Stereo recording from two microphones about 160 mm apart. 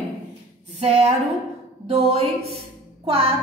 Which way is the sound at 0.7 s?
40° right (ahead or behind).